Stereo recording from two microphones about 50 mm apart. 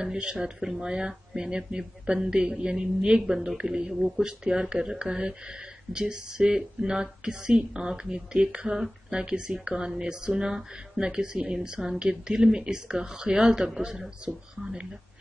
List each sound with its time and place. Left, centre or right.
0.0 s speech: centre